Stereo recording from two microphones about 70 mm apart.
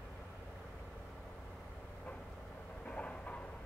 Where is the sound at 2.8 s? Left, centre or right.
Centre.